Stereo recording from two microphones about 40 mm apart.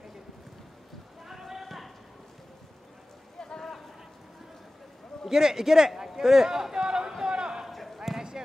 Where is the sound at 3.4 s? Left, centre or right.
Centre.